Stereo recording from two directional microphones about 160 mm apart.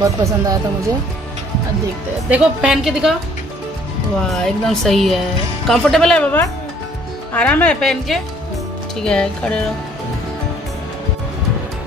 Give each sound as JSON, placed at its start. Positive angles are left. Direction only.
{"t": 0.0, "sound": "speech", "side_deg": -20}
{"t": 2.2, "sound": "a woman's voice", "side_deg": -5}
{"t": 4.3, "sound": "a woman's voice", "side_deg": 0}